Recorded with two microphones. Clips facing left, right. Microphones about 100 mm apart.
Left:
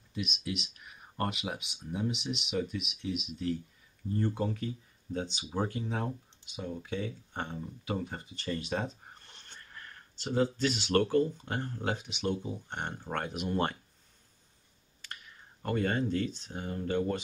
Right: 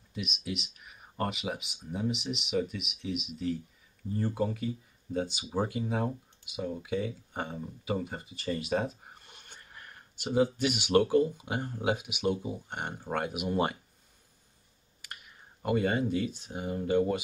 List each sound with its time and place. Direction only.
0.1 s speech: centre (ahead or behind)
15.0 s clicking: 10° right (ahead or behind)
15.6 s speech: 10° right (ahead or behind)